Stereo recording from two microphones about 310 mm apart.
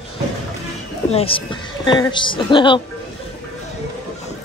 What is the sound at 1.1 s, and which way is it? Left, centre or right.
A woman's voice, centre.